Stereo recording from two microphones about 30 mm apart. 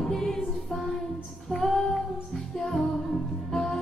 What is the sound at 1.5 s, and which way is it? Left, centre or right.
Female singing, centre.